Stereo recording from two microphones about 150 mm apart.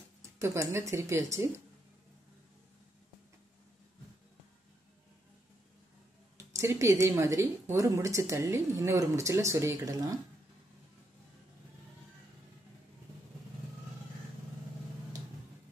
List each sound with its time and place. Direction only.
0.4 s speech: 20° right (ahead or behind)
6.3 s speech: 20° right (ahead or behind)